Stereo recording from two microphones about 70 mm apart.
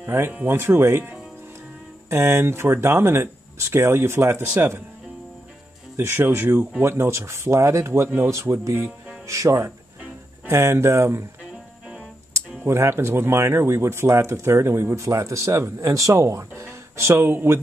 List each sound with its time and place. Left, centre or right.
0.0 s speech: right
5.9 s speech: right
12.6 s speech: right
17.2 s speech: right